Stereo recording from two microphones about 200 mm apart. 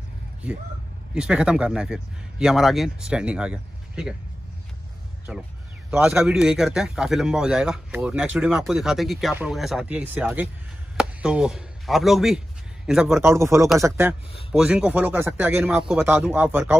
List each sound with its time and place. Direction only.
1.1 s a man's voice: 5° right (ahead or behind)
5.3 s a man's voice: 5° right (ahead or behind)